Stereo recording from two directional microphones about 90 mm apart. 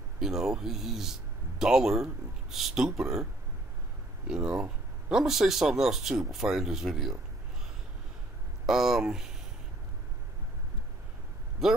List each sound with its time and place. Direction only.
0.2 s speech: 5° right (ahead or behind)
4.3 s speech: 10° right (ahead or behind)
8.6 s speech: 5° right (ahead or behind)
11.6 s speech: 5° right (ahead or behind)